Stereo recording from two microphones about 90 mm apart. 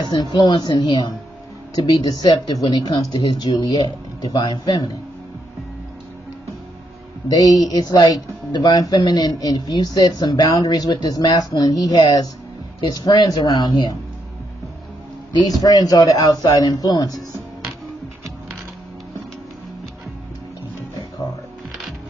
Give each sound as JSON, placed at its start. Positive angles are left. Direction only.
{"t": 0.0, "sound": "speech", "side_deg": 55}
{"t": 7.2, "sound": "speech", "side_deg": 45}
{"t": 15.6, "sound": "speech", "side_deg": 45}